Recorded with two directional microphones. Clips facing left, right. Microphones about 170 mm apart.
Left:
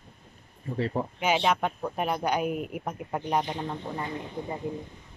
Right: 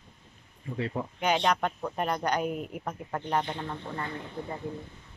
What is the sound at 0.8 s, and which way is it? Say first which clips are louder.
Speech: left 3 dB; 40° left (ahead or behind).